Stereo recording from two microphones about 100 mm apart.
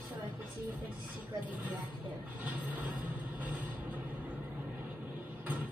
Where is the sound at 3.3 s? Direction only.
15° right (ahead or behind).